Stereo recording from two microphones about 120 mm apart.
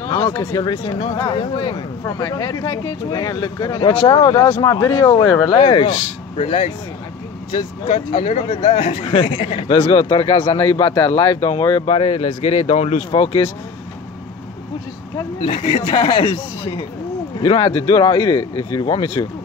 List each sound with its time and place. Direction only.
0.1 s speech: 30° left (ahead or behind)
5.9 s speech: 65° left (ahead or behind); by 8.3 s 50° left (ahead or behind)
8.3 s speech: 65° left (ahead or behind); by 11.6 s 45° left (ahead or behind)
11.8 s speech: 55° left (ahead or behind)
13.1 s speech: 50° left (ahead or behind)
15.4 s speech: 45° left (ahead or behind)
18.9 s speech: 55° left (ahead or behind)